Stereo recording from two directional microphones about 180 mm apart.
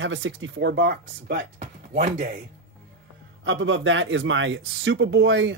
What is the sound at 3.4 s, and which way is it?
Speech, 90° right.